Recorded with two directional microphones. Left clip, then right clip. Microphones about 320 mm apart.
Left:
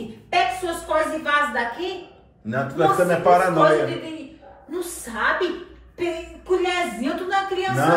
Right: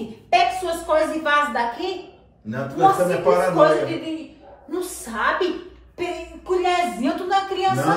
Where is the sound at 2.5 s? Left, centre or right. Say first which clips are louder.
Right 2 dB; centre.